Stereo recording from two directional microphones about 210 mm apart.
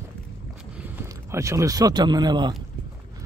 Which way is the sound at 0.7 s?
10° right (ahead or behind).